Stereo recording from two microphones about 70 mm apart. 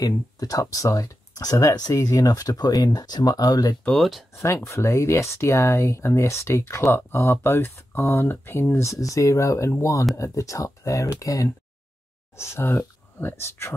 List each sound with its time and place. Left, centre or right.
0.0 s speech: left
3.9 s speech: centre
4.3 s speech: left
12.4 s speech: left